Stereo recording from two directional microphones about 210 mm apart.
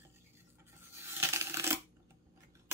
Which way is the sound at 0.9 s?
10° right (ahead or behind).